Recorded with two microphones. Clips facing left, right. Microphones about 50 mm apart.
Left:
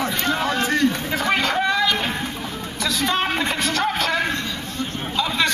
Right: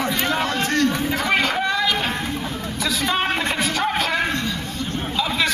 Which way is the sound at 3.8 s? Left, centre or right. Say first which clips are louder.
Even; centre.